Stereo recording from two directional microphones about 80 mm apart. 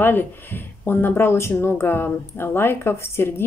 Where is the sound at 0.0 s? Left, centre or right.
Left.